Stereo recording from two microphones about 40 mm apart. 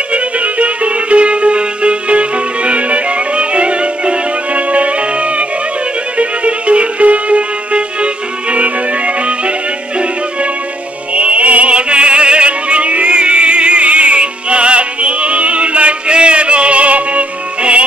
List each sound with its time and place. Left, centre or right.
0.1 s music: right
11.1 s opera: right